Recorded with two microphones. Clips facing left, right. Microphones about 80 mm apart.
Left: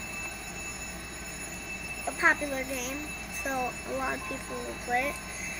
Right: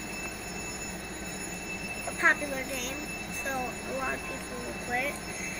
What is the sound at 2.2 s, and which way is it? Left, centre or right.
A child's voice, centre.